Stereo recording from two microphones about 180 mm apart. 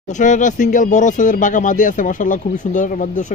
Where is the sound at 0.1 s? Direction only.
45° left (ahead or behind).